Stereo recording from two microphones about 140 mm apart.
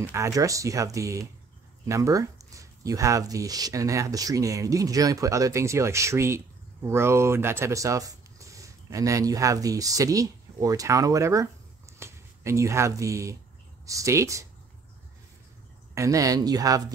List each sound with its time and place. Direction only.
0.1 s speech: 25° right (ahead or behind)
15.9 s speech: 20° right (ahead or behind)